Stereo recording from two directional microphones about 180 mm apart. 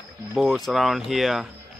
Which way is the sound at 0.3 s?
Centre (ahead or behind).